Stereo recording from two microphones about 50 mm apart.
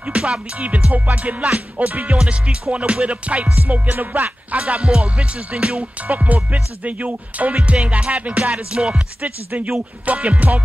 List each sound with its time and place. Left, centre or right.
0.0 s music: centre; by 4.6 s right
4.6 s music: right
9.8 s music: right